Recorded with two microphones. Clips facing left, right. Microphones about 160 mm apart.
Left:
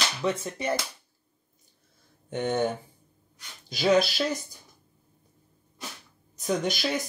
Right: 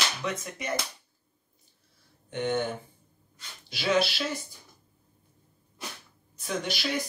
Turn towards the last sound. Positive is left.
turn(degrees=45)  # may be behind; listen again after turning